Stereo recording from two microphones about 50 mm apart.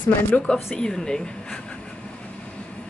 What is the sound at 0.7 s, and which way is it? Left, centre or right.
Speech, centre.